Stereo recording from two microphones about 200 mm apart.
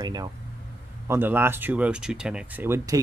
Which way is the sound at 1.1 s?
10° right (ahead or behind).